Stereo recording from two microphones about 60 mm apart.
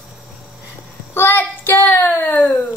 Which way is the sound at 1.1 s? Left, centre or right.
Left.